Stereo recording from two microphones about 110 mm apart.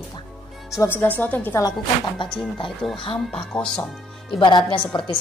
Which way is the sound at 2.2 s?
45° left (ahead or behind).